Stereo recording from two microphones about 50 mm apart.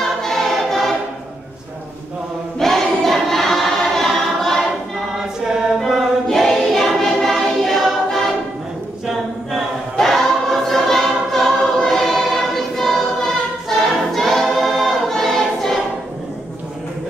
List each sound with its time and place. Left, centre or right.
0.0 s choir: centre
2.6 s choir: centre
4.9 s choir: centre
6.2 s choir: centre
9.6 s choir: centre